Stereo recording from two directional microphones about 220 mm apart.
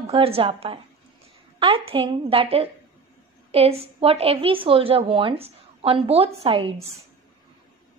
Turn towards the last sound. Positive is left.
turn(degrees=-25)  # may be behind; listen again after turning